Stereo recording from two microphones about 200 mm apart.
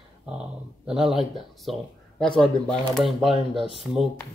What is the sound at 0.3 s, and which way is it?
Speech, 5° right (ahead or behind).